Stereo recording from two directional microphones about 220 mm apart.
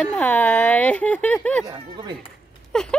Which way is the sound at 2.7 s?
5° left (ahead or behind).